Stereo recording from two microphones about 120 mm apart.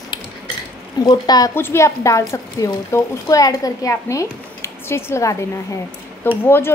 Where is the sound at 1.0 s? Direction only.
35° left (ahead or behind).